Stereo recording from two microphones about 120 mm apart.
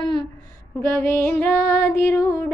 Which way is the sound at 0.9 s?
20° left (ahead or behind).